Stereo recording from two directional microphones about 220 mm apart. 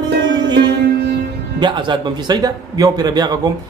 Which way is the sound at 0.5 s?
50° right (ahead or behind).